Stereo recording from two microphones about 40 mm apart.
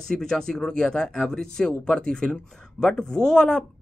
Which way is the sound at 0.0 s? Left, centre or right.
Centre.